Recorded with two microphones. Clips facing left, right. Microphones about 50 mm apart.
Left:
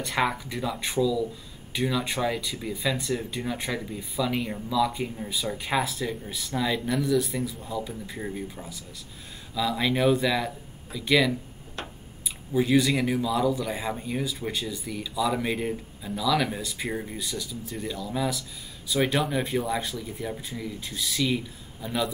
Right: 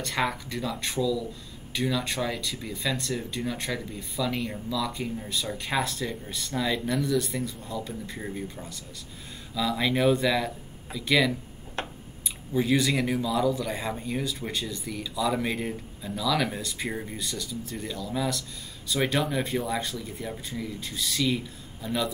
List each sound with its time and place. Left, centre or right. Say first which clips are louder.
0.0 s speech: left 2 dB; centre
11.8 s a sound: right 3 dB; right
12.5 s speech: left 2 dB; centre